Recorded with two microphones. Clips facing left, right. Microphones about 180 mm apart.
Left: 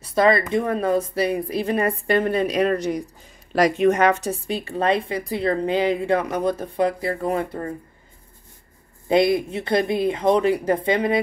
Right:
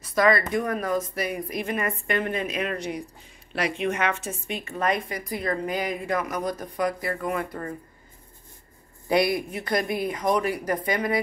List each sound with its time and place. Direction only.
0.0 s a sound: 30° left (ahead or behind)
0.5 s a woman's voice: 25° left (ahead or behind)
9.1 s speech: 25° left (ahead or behind)